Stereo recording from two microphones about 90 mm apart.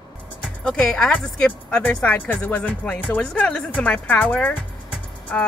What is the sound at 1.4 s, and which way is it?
A woman's voice, 15° left (ahead or behind).